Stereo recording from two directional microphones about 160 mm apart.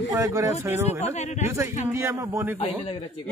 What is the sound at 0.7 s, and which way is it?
Speech, 45° left (ahead or behind).